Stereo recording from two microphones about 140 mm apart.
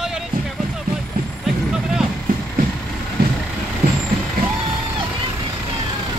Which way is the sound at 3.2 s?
90° right.